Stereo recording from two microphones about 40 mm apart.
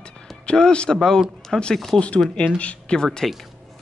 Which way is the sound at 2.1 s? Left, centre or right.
Centre.